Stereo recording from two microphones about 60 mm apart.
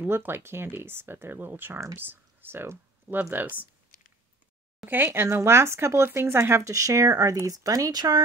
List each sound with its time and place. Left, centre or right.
0.1 s speech: right
4.8 s speech: right
6.7 s speech: right